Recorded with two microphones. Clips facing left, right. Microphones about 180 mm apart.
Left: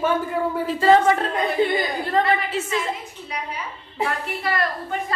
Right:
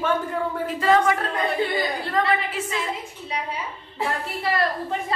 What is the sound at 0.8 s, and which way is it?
A woman's voice, 30° left (ahead or behind).